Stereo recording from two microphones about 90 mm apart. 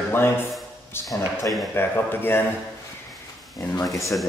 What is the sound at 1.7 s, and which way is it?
Speech, 25° left (ahead or behind).